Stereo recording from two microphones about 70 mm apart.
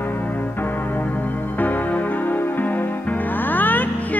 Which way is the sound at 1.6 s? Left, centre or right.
Left.